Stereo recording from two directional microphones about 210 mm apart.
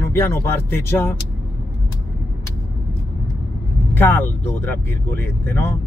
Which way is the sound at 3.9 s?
10° left (ahead or behind).